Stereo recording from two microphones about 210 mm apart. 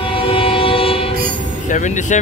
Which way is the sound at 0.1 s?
25° left (ahead or behind).